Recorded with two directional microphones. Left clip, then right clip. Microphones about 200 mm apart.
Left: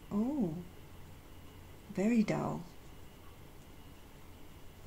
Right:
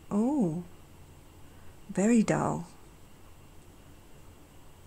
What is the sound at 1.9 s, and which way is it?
Speech, 50° right (ahead or behind).